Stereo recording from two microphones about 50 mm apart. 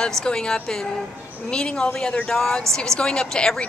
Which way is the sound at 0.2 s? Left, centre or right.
Centre.